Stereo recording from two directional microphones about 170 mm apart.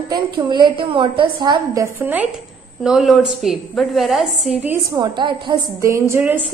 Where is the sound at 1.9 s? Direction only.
10° right (ahead or behind).